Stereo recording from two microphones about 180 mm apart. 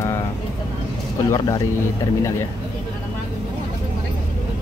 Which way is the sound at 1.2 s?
20° left (ahead or behind).